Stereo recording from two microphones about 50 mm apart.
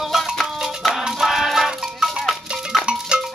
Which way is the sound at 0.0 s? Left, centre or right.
Centre.